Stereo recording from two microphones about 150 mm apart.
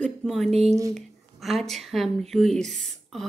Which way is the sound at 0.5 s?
45° right (ahead or behind).